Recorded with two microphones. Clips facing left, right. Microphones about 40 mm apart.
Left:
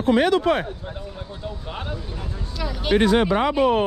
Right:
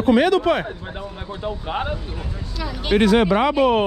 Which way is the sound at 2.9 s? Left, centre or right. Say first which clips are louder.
Right 2 dB; right.